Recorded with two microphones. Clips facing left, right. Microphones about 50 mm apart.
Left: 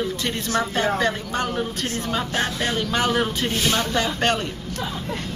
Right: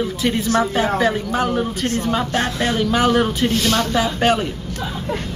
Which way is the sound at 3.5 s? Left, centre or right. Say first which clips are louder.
Right 4 dB; centre.